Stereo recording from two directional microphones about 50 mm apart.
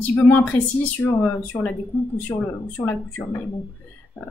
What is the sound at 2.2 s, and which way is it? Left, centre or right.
Speech, left.